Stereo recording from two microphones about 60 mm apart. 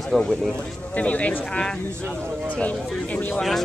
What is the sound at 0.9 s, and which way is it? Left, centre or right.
Speech, left.